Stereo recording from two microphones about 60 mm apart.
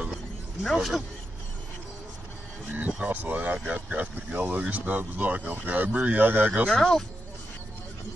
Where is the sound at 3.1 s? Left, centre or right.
Right.